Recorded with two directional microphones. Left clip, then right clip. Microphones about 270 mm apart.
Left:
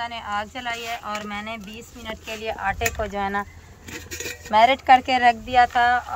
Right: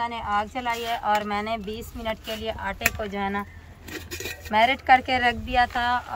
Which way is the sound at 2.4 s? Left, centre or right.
Centre.